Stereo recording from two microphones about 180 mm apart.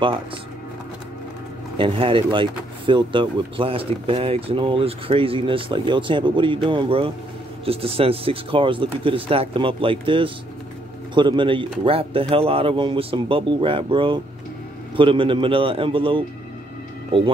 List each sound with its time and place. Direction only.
1.8 s speech: 30° right (ahead or behind)